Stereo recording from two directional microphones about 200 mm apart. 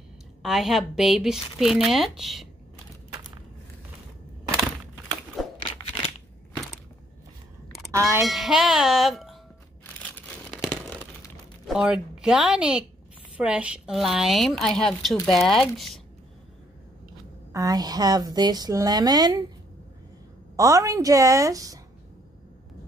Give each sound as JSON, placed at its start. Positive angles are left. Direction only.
{"t": 0.4, "sound": "speech", "side_deg": 0}
{"t": 5.4, "sound": "crumpling", "side_deg": 0}
{"t": 7.9, "sound": "speech", "side_deg": -15}
{"t": 8.2, "sound": "speech", "side_deg": 0}
{"t": 10.5, "sound": "tearing", "side_deg": 0}
{"t": 11.6, "sound": "speech", "side_deg": -5}
{"t": 17.5, "sound": "speech", "side_deg": -20}
{"t": 20.5, "sound": "a woman's voice", "side_deg": -15}